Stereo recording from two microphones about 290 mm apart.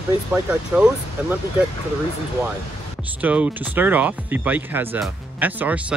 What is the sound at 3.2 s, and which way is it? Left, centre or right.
Speech, centre.